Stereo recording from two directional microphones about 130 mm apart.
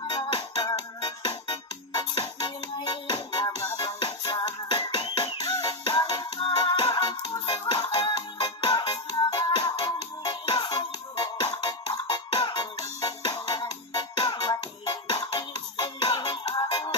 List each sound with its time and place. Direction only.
0.0 s music: 35° left (ahead or behind)